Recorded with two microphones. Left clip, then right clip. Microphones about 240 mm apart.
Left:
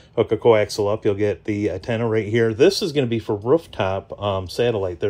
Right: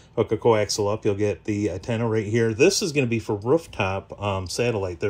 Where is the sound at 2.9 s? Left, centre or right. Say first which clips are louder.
Left 2 dB; centre.